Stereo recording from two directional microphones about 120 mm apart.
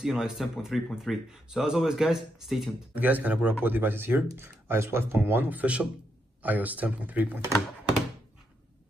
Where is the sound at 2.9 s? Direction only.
15° right (ahead or behind).